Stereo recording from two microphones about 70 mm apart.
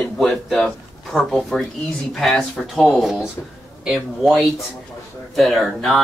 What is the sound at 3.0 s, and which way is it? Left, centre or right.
Speech, centre.